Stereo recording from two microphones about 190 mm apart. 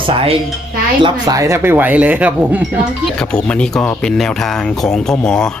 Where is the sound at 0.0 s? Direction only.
30° right (ahead or behind); by 2.9 s 10° right (ahead or behind).